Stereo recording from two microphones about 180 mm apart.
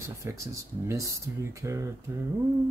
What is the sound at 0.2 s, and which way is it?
Speech, 15° right (ahead or behind).